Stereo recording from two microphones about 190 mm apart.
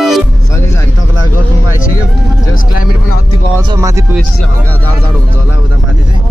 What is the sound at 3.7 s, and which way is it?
Speech, 15° right (ahead or behind).